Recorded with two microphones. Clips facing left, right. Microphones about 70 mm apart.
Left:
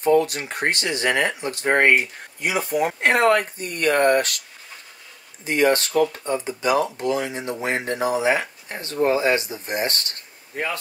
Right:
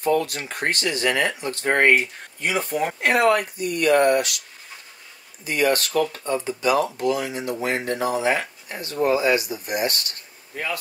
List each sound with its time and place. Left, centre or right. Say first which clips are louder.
0.0 s speech: left 3 dB; left; by 2.9 s centre
3.0 s speech: even; left
5.4 s speech: left 2 dB; left
9.0 s speech: even; left